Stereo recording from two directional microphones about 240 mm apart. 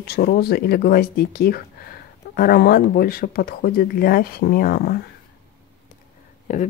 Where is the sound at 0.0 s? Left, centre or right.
Left.